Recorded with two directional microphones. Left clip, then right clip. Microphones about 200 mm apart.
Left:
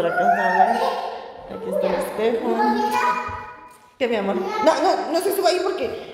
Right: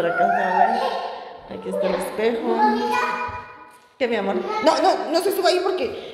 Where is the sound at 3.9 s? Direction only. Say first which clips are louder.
Even; 5° right (ahead or behind).